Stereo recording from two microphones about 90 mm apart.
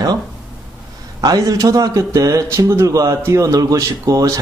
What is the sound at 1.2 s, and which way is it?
A man's voice, 45° right (ahead or behind).